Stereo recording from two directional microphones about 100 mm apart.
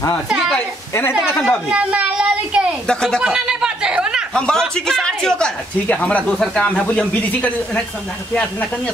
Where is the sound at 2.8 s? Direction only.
10° left (ahead or behind).